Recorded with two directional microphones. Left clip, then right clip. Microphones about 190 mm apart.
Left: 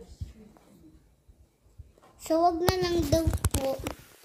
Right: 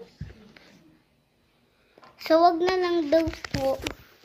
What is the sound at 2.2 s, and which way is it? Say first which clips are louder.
A child's voice: right 5 dB; 10° right (ahead or behind).